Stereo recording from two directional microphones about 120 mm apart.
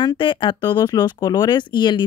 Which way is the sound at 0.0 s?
40° left (ahead or behind).